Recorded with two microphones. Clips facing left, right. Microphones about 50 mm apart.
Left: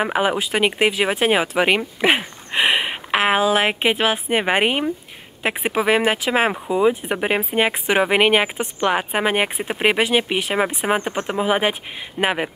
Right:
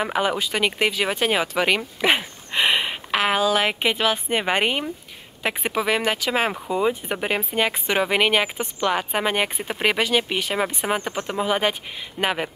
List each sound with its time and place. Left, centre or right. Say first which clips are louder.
0.0 s a woman's voice: left 3 dB; centre
6.5 s speech: left 4 dB; centre